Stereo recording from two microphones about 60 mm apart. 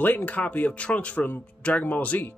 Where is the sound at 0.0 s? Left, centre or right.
Left.